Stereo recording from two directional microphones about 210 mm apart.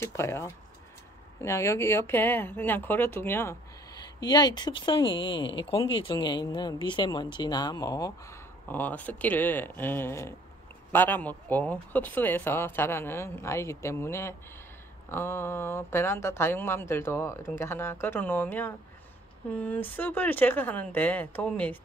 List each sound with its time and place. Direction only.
0.0 s speech: 10° left (ahead or behind)